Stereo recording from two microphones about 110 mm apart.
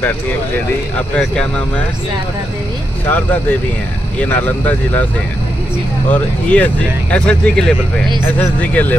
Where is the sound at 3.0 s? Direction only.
15° left (ahead or behind).